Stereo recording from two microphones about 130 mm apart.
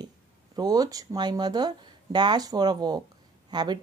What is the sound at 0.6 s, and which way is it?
Speech, 30° right (ahead or behind).